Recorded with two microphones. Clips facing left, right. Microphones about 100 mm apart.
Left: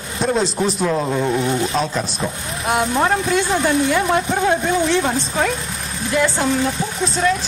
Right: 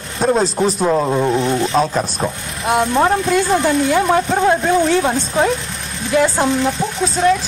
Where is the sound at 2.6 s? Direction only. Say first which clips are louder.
Right 3 dB; centre (ahead or behind).